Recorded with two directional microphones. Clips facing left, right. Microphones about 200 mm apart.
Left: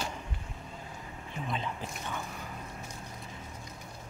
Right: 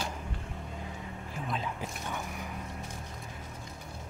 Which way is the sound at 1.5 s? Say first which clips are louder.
Even; 5° right (ahead or behind).